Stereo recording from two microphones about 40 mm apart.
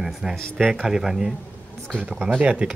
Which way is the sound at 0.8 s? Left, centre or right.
Centre.